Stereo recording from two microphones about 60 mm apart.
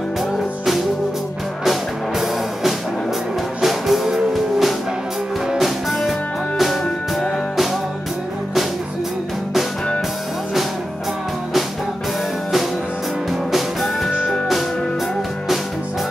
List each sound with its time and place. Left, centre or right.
1.6 s music: centre
13.3 s music: centre
14.1 s music: centre